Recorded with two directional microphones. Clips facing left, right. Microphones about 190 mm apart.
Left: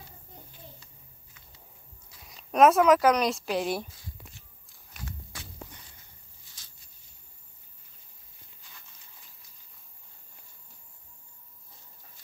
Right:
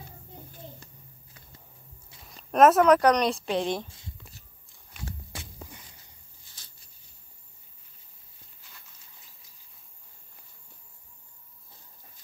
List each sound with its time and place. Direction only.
1.4 s music: 35° right (ahead or behind)
2.2 s speech: centre (ahead or behind)
3.8 s a sound: 25° right (ahead or behind)